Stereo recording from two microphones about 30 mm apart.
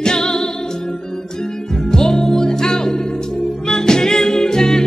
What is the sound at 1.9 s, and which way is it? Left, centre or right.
Music, left.